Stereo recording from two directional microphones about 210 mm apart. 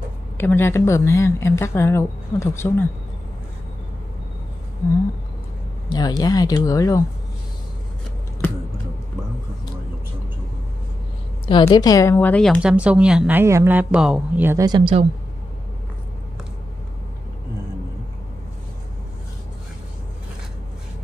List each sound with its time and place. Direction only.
0.4 s a woman's voice: 10° left (ahead or behind)
5.9 s a woman's voice: 20° left (ahead or behind)
11.4 s a woman's voice: 20° left (ahead or behind); by 15.0 s 20° right (ahead or behind)